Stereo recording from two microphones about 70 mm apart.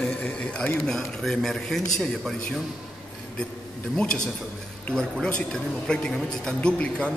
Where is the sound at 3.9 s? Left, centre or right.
Centre.